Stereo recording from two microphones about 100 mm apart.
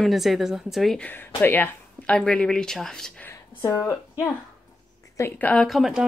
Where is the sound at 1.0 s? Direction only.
20° left (ahead or behind).